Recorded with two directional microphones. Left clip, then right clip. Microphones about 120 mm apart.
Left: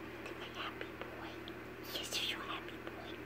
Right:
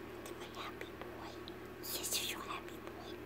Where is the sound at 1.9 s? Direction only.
15° left (ahead or behind).